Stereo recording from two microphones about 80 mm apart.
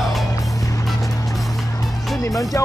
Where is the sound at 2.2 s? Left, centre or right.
Left.